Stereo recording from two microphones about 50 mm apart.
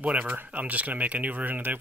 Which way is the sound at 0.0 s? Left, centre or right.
Right.